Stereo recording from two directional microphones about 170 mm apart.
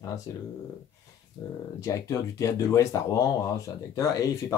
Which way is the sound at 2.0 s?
20° left (ahead or behind).